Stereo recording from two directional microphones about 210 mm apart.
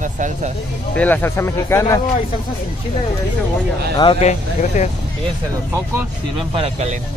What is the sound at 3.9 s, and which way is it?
Speech, 25° left (ahead or behind).